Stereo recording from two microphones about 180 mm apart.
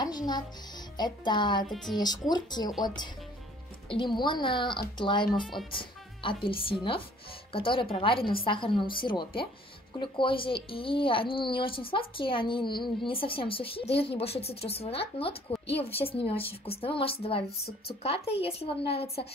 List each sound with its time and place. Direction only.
0.0 s speech: 20° left (ahead or behind)
1.7 s speech: centre (ahead or behind)
2.0 s speech: 20° left (ahead or behind)
3.9 s speech: 25° left (ahead or behind)
5.4 s speech: centre (ahead or behind)
5.7 s a woman's voice: 30° left (ahead or behind)
15.5 s a sound: 30° left (ahead or behind)
16.1 s a woman's voice: 30° left (ahead or behind)